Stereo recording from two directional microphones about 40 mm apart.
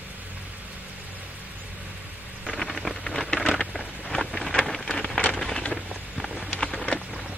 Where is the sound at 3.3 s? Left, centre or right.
Left.